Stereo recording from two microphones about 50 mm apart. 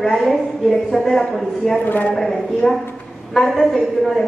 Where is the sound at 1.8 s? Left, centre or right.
Left.